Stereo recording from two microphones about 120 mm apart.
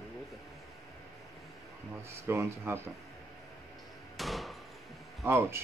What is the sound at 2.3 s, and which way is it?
Speech, 20° right (ahead or behind).